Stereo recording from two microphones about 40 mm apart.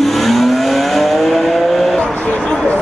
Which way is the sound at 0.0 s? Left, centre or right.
Centre.